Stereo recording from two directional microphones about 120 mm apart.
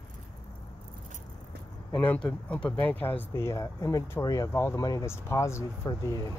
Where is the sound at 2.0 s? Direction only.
10° left (ahead or behind).